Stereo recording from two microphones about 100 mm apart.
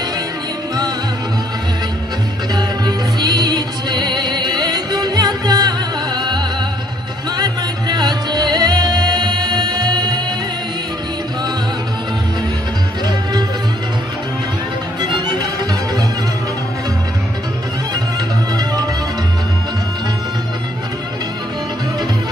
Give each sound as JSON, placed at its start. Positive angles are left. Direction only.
{"t": 2.5, "sound": "music", "side_deg": -45}
{"t": 15.0, "sound": "music", "side_deg": -45}